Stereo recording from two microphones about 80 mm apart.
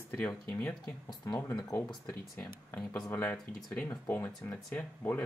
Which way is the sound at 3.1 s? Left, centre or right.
Left.